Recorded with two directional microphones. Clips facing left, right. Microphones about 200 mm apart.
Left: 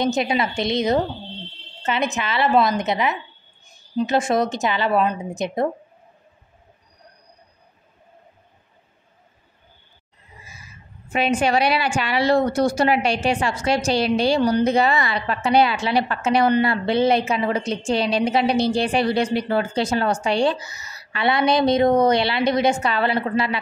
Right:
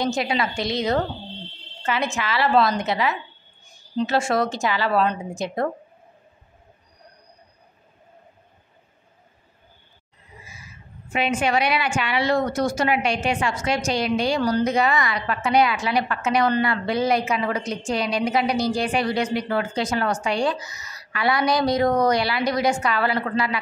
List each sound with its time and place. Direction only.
0.0 s a woman's voice: 20° left (ahead or behind)
11.1 s a woman's voice: 35° left (ahead or behind)